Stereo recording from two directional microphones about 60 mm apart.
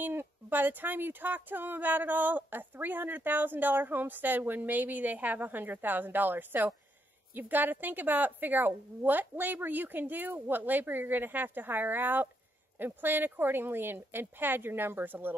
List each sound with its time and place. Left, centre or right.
0.0 s speech: right